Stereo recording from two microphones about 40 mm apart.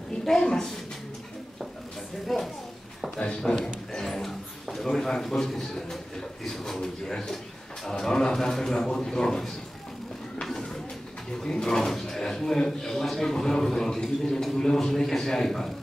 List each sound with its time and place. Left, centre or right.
0.4 s speech: centre
2.2 s speech: centre
3.2 s speech: left
3.9 s a sound: centre
4.8 s speech: centre
11.4 s speech: centre